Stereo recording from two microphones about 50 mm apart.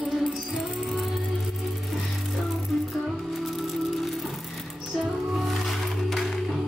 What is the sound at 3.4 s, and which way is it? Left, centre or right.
Music, centre.